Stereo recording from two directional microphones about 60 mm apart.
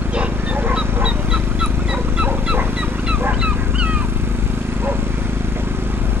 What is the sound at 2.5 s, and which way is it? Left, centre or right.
Fowl, right.